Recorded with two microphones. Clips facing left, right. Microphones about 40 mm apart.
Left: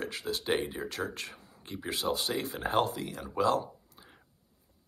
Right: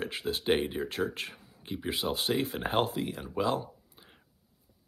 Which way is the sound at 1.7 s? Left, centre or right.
Centre.